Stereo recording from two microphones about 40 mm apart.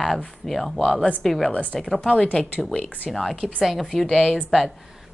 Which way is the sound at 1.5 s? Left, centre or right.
Left.